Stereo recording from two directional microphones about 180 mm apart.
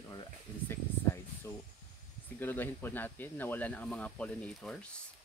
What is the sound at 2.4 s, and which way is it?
Speech, 10° left (ahead or behind).